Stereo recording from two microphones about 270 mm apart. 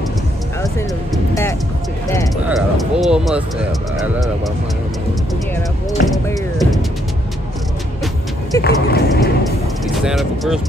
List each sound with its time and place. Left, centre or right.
2.4 s speech: centre
6.1 s speech: centre
8.5 s speech: left
10.0 s speech: centre